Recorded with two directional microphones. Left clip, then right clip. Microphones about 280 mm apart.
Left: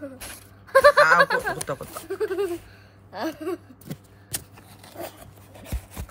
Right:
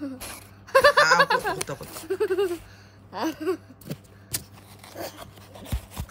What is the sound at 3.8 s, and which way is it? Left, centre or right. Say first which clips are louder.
Scissors: right 1 dB; centre.